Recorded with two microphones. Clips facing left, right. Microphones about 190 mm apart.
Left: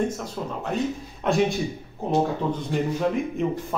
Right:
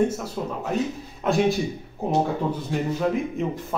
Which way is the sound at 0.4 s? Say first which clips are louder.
Right 1 dB; 5° right (ahead or behind).